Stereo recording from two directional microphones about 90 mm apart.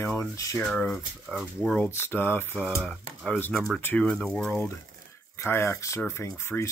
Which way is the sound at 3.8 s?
20° left (ahead or behind).